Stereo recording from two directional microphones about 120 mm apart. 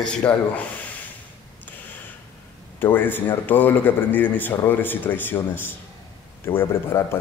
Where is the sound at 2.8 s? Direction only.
15° left (ahead or behind).